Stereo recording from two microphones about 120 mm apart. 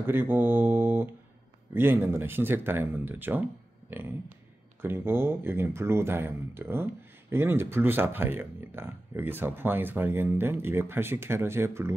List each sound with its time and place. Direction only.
0.0 s speech: 15° right (ahead or behind)